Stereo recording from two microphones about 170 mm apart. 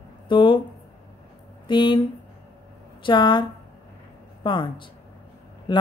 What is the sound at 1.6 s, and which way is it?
Speech, 30° left (ahead or behind).